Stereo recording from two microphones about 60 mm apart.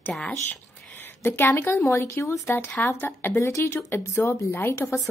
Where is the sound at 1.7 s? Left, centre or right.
Left.